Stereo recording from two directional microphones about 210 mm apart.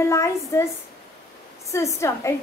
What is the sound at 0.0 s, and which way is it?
Speech, 15° left (ahead or behind).